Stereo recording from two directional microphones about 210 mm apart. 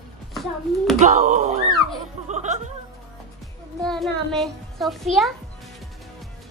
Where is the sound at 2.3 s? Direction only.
35° right (ahead or behind).